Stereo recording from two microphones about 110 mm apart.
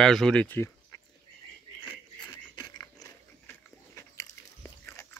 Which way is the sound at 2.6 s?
35° left (ahead or behind).